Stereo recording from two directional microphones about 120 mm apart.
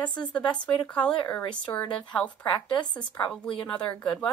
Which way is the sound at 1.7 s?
30° left (ahead or behind).